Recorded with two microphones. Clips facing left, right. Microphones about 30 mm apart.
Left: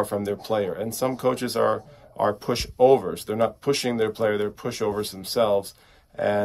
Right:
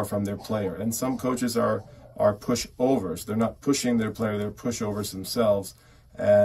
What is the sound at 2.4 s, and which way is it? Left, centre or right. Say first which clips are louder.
Speech: left 6 dB; left.